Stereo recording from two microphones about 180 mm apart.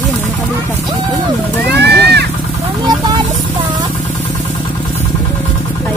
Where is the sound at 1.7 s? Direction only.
65° right (ahead or behind).